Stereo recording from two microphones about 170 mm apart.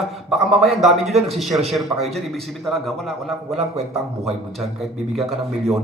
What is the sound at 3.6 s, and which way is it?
Speech, 40° right (ahead or behind).